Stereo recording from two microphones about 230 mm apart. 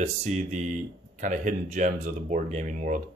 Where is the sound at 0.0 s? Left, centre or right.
Right.